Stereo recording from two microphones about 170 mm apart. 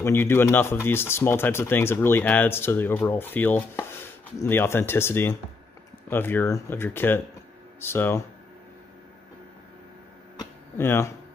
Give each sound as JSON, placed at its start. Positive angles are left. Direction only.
{"t": 0.0, "sound": "speech", "side_deg": 15}
{"t": 10.8, "sound": "speech", "side_deg": 15}